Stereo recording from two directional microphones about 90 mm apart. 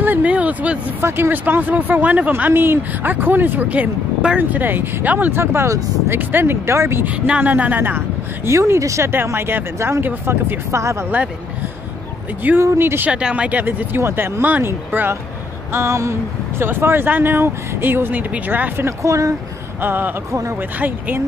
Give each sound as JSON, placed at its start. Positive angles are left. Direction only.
{"t": 0.0, "sound": "a sound", "side_deg": -20}
{"t": 1.0, "sound": "speech", "side_deg": -25}
{"t": 7.2, "sound": "speech", "side_deg": -15}
{"t": 8.5, "sound": "speech", "side_deg": -35}
{"t": 12.6, "sound": "speech", "side_deg": -25}
{"t": 13.1, "sound": "speech", "side_deg": -10}
{"t": 19.8, "sound": "speech", "side_deg": -20}